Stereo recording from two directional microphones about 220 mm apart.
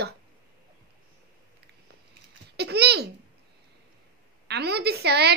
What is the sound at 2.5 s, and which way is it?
Speech, 50° right (ahead or behind).